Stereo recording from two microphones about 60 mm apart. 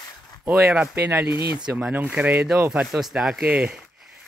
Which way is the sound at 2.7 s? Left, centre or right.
Centre.